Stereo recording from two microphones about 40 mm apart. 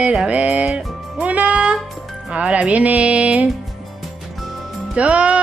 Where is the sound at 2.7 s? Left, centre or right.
Right.